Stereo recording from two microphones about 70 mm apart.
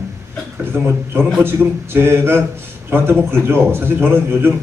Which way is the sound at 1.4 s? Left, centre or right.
Right.